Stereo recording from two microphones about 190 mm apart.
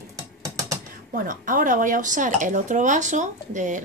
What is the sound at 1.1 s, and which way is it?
Speech, 45° right (ahead or behind).